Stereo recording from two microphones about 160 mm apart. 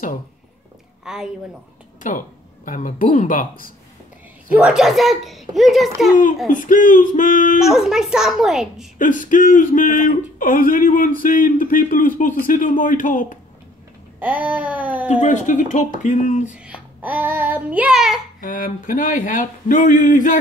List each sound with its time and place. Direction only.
1.0 s speech: 5° right (ahead or behind)
2.0 s speech: 55° left (ahead or behind)
4.5 s a child's voice: 5° right (ahead or behind)
6.5 s speech: 55° left (ahead or behind)
7.6 s a child's voice: 5° right (ahead or behind)
8.9 s speech: 55° left (ahead or behind)
14.2 s child singing: 10° right (ahead or behind)
15.0 s speech: 50° left (ahead or behind)
16.5 s child singing: 5° right (ahead or behind)
18.4 s speech: 60° left (ahead or behind)